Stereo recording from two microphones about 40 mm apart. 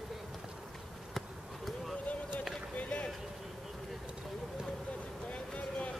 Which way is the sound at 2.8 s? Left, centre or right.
Left.